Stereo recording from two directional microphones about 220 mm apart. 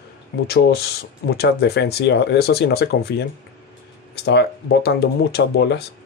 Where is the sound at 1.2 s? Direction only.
50° left (ahead or behind).